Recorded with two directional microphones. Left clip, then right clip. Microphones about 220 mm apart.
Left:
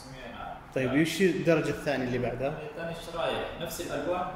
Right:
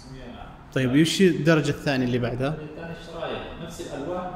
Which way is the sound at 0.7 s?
35° right (ahead or behind).